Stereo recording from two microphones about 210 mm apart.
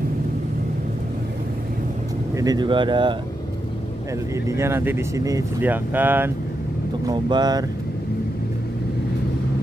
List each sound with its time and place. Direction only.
2.3 s speech: 20° right (ahead or behind)
4.5 s speech: 15° right (ahead or behind)
7.1 s speech: 20° right (ahead or behind)